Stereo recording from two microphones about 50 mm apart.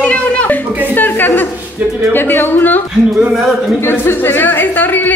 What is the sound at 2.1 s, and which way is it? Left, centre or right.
Speech, left.